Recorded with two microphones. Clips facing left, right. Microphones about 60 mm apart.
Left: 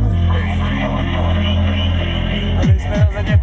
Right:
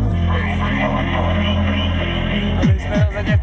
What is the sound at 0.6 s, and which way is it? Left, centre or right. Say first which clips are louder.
Music: right 2 dB; right.